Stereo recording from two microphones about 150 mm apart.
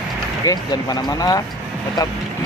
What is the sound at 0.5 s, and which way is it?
Speech, 25° left (ahead or behind).